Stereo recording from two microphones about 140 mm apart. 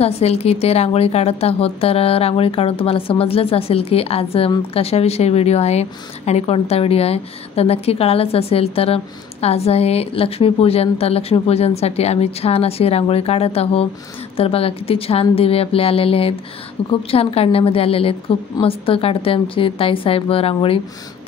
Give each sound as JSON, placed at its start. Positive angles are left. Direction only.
{"t": 0.0, "sound": "a woman's voice", "side_deg": 50}